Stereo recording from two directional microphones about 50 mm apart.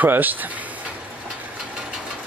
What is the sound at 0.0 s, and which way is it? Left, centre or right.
Speech, right.